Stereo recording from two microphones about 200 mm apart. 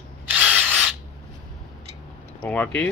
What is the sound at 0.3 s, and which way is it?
Drill, 5° right (ahead or behind).